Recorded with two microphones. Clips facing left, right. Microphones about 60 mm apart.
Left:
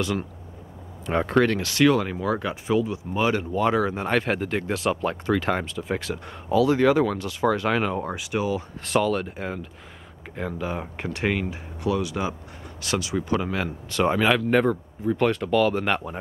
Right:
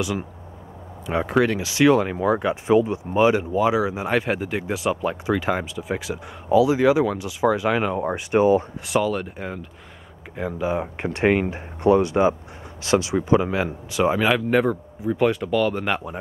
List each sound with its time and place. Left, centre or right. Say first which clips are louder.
0.0 s speech: right 1 dB; centre
8.3 s speech: right 10 dB; right
8.8 s speech: right 1 dB; centre
11.0 s speech: right 6 dB; right; by 16.2 s centre